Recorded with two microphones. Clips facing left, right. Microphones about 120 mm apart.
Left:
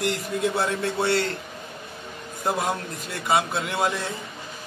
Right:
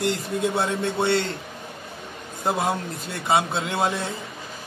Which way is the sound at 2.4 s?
25° right (ahead or behind).